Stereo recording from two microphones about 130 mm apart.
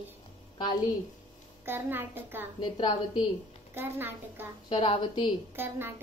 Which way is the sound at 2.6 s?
35° left (ahead or behind).